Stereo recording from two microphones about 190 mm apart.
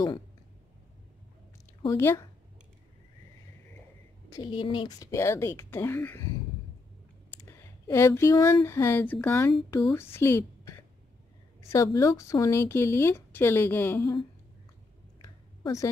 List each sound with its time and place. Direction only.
1.8 s speech: 15° left (ahead or behind)
4.3 s speech: 25° left (ahead or behind)
7.2 s clicking: 15° left (ahead or behind)
8.6 s a woman's voice: 15° left (ahead or behind)
15.2 s a sound: 15° left (ahead or behind)